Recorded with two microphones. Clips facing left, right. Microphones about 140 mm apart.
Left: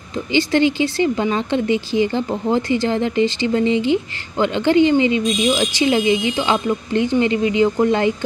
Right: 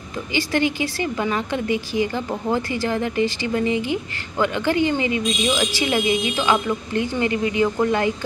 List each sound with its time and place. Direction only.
0.3 s speech: 25° left (ahead or behind)